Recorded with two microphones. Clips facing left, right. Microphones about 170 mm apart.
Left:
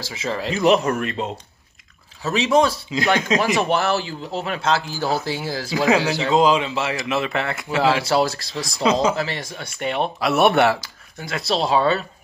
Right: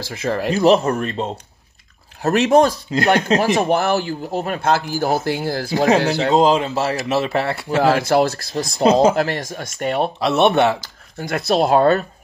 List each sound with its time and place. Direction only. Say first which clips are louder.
0.0 s speech: right 4 dB; 55° right (ahead or behind)
0.8 s a man's voice: right 2 dB; 35° right (ahead or behind)
2.2 s speech: right 4 dB; 60° right (ahead or behind)
3.3 s a man's voice: right 3 dB; 40° right (ahead or behind)
3.7 s speech: right 3 dB; 60° right (ahead or behind)
6.3 s a man's voice: right 1 dB; 40° right (ahead or behind)
10.4 s speech: right 1 dB; 20° right (ahead or behind)
11.2 s speech: right 5 dB; 55° right (ahead or behind)